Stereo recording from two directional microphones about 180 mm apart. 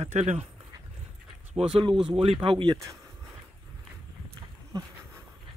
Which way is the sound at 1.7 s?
30° right (ahead or behind).